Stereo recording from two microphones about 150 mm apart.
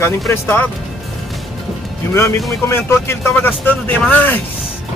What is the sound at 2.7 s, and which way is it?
Speech, 15° left (ahead or behind).